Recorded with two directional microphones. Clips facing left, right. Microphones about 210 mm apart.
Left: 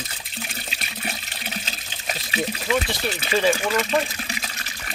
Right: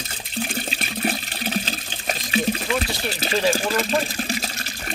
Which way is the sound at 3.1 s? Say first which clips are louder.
Even; 35° right (ahead or behind).